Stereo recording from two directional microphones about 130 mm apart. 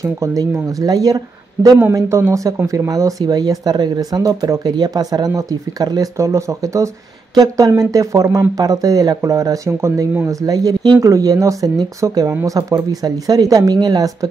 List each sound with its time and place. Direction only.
0.0 s speech: 25° right (ahead or behind)